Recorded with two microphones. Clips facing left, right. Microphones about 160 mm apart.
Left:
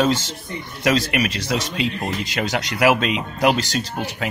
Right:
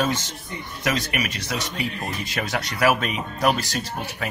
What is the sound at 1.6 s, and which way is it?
Speech, 90° left.